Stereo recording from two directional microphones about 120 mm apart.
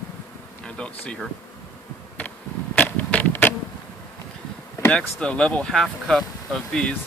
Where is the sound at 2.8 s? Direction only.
10° left (ahead or behind).